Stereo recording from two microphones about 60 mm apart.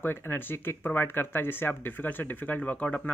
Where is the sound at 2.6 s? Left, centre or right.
Centre.